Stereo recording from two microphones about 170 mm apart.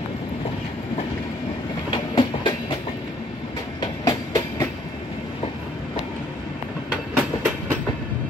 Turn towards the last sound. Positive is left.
turn(degrees=-5)  # may be behind; listen again after turning